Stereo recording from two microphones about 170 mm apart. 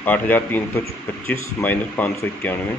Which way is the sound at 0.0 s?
10° left (ahead or behind).